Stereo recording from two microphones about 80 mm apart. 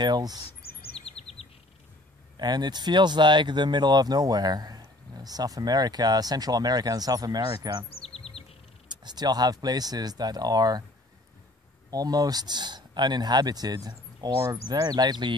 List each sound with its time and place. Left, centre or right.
0.0 s speech: right
2.3 s speech: right
8.3 s bird: centre
8.8 s speech: right
11.9 s speech: right